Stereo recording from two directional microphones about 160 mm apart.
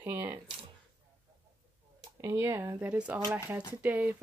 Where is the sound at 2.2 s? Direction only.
15° right (ahead or behind).